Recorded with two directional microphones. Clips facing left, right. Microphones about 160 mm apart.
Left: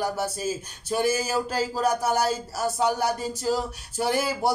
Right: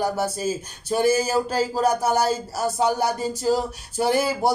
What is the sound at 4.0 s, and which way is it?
Speech, 35° right (ahead or behind).